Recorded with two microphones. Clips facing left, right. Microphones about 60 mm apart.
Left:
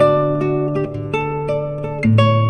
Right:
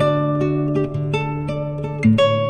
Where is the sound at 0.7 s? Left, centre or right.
Left.